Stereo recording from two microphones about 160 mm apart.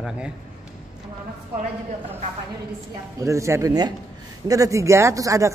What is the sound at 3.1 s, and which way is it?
Speech, 20° right (ahead or behind).